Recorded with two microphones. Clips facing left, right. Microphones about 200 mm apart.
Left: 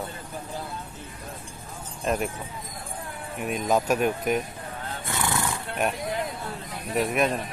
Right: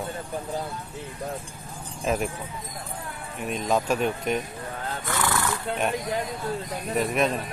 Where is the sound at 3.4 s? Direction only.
5° left (ahead or behind).